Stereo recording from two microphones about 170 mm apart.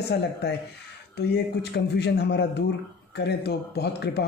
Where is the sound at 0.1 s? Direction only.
80° left.